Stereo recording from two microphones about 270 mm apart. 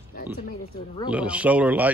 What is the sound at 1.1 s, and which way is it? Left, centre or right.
Speech, centre.